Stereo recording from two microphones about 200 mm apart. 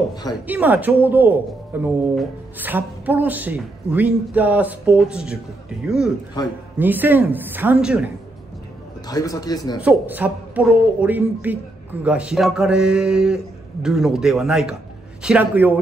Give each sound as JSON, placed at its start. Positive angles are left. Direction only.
{"t": 0.1, "sound": "a man's voice", "side_deg": 20}
{"t": 0.5, "sound": "a man's voice", "side_deg": -10}
{"t": 9.0, "sound": "a man's voice", "side_deg": 20}
{"t": 9.8, "sound": "a man's voice", "side_deg": -10}